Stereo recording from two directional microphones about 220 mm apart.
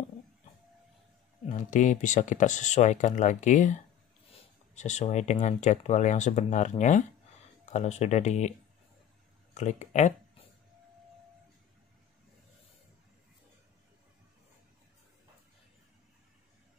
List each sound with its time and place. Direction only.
1.4 s speech: 35° left (ahead or behind)